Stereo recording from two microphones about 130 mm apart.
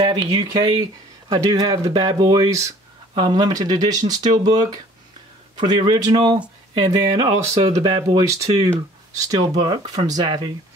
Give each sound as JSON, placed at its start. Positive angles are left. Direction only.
{"t": 0.0, "sound": "speech", "side_deg": -35}
{"t": 7.8, "sound": "speech", "side_deg": -35}